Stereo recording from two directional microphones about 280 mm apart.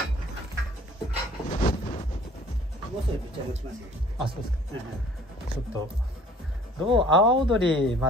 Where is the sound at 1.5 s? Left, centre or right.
Left.